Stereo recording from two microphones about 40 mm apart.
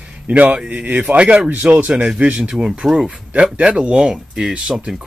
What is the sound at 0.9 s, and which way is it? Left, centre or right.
Speech, right.